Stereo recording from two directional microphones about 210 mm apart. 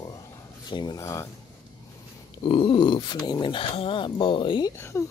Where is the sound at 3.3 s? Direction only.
25° left (ahead or behind).